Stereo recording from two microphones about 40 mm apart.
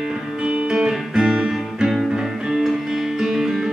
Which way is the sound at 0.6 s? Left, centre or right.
Centre.